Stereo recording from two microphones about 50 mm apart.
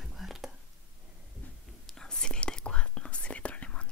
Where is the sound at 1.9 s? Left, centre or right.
Centre.